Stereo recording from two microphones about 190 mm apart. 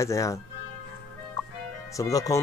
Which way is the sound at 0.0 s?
15° left (ahead or behind).